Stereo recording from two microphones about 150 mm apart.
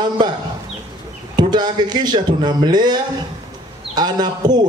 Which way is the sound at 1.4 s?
30° right (ahead or behind).